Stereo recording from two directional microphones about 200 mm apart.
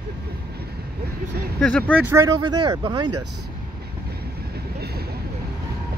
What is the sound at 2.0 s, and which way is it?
Speech, 10° right (ahead or behind).